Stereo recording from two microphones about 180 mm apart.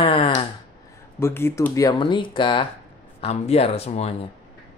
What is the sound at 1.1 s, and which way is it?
Speech, 15° left (ahead or behind).